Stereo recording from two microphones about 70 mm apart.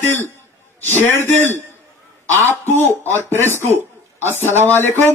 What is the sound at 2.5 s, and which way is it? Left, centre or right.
Speech, left.